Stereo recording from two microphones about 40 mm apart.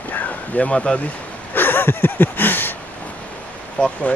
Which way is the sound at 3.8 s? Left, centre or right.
Left.